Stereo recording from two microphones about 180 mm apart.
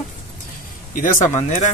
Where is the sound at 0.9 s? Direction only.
45° left (ahead or behind).